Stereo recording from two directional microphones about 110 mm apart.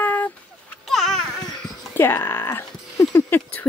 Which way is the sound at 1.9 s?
20° left (ahead or behind).